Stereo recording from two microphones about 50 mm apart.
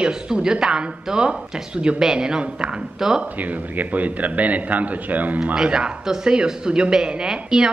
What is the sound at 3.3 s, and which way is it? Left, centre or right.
A man's voice, right.